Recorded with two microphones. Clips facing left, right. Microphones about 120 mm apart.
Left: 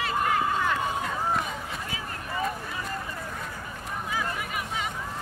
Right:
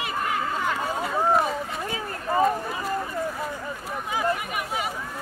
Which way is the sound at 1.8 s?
40° right (ahead or behind).